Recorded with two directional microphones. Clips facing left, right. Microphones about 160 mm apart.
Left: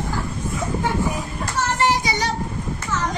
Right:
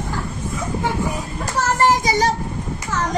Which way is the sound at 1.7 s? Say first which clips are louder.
Right 5 dB; 45° right (ahead or behind).